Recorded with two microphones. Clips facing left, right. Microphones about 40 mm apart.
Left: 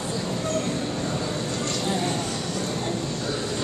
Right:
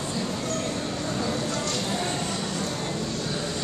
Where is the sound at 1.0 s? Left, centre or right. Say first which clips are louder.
Even; centre.